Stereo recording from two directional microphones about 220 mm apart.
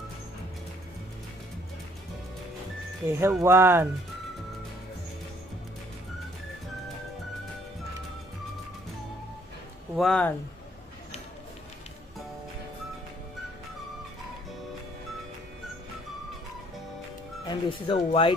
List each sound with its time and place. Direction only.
3.1 s speech: 10° right (ahead or behind)
9.9 s speech: 5° left (ahead or behind)
17.5 s speech: 25° left (ahead or behind)